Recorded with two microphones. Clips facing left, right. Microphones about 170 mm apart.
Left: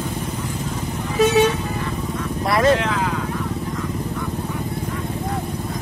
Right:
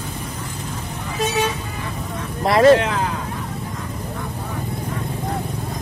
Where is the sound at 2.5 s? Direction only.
30° right (ahead or behind).